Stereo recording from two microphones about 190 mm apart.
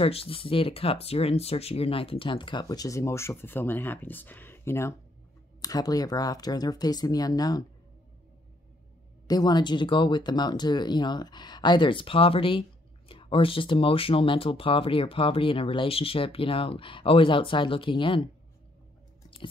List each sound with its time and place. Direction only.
0.0 s speech: 30° left (ahead or behind)
9.3 s speech: 20° left (ahead or behind)